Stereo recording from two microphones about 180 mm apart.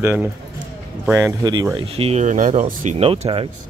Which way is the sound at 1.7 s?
30° right (ahead or behind).